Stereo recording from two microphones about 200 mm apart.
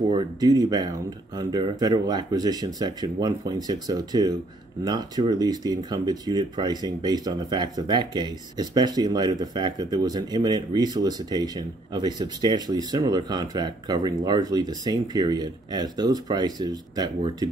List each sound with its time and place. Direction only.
0.1 s speech: 20° right (ahead or behind)